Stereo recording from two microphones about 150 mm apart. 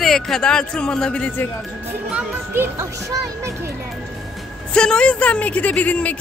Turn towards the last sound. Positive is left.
turn(degrees=10)  # may be behind; listen again after turning